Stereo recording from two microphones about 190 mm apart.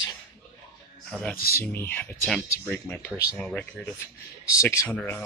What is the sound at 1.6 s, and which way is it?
Speech, 10° left (ahead or behind).